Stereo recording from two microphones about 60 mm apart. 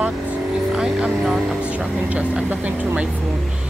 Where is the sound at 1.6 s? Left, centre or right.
Right.